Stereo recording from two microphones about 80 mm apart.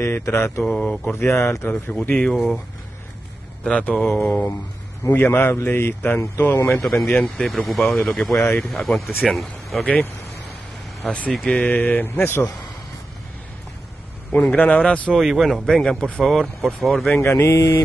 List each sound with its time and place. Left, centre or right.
0.0 s mantra: left
0.7 s speech: centre
1.0 s mantra: left
1.7 s speech: centre
2.3 s speech: centre
3.6 s a man's voice: centre; by 6.8 s left
6.8 s speech: centre
7.8 s speech: centre
8.1 s speech: centre
11.0 s a man's voice: centre; by 12.2 s left
14.3 s speech: centre
17.2 s mantra: left